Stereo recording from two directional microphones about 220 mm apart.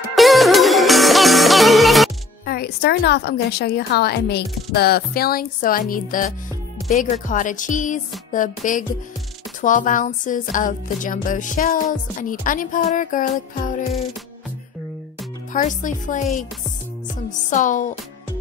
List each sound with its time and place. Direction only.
0.1 s music: centre (ahead or behind)
2.4 s a woman's voice: 45° left (ahead or behind)
15.5 s speech: 35° left (ahead or behind)
17.3 s speech: 35° left (ahead or behind)